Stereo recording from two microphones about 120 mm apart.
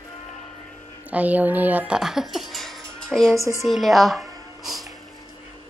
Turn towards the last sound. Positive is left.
turn(degrees=0)  # may be behind; listen again after turning